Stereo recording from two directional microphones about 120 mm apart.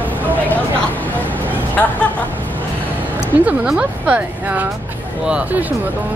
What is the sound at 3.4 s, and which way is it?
Speech, 10° right (ahead or behind).